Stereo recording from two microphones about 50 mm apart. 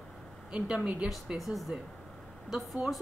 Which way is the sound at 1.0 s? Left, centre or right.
Centre.